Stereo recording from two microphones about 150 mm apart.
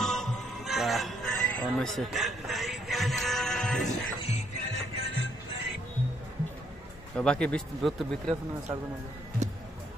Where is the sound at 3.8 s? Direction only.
50° left (ahead or behind).